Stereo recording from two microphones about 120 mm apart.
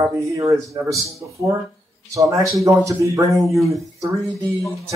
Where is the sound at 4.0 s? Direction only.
30° right (ahead or behind).